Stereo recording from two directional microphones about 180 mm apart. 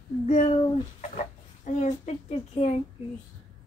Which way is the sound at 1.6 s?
40° left (ahead or behind).